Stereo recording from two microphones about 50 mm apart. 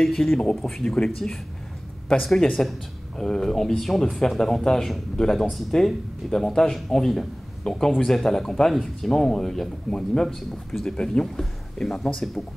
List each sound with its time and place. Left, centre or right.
0.0 s speech: centre
0.8 s speech: centre
2.6 s speech: centre